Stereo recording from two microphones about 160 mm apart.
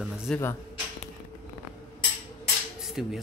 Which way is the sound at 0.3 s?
Centre (ahead or behind).